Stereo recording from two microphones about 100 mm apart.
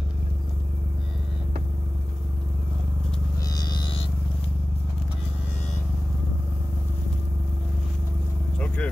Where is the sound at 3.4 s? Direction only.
45° left (ahead or behind).